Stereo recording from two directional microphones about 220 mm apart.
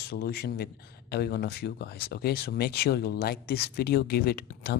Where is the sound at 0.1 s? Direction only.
45° left (ahead or behind).